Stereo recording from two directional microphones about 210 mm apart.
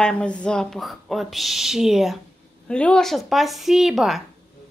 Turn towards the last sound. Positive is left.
turn(degrees=0)  # may be behind; listen again after turning